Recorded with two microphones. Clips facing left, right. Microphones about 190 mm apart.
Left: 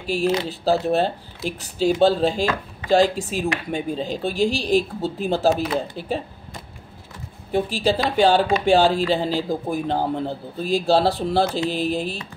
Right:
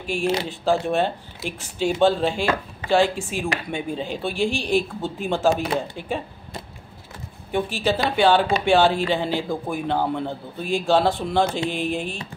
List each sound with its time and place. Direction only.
0.0 s speech: 40° left (ahead or behind)
7.5 s speech: 35° left (ahead or behind)